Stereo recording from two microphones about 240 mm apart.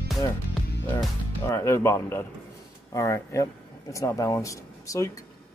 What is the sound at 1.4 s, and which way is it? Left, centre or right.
Speech, centre.